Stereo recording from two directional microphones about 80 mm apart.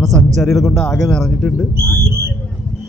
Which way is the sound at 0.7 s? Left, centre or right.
Centre.